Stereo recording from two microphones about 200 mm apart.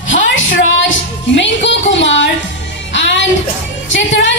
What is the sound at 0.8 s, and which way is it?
Music, 65° left (ahead or behind).